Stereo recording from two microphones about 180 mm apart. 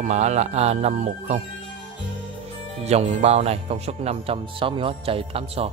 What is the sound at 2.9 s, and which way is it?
Speech, 40° right (ahead or behind).